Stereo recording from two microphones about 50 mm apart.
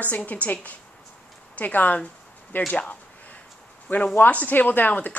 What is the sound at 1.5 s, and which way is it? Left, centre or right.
Speech, left.